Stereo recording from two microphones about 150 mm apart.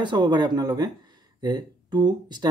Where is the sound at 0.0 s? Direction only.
30° right (ahead or behind).